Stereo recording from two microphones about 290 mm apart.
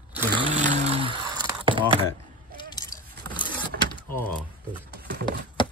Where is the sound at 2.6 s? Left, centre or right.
Centre.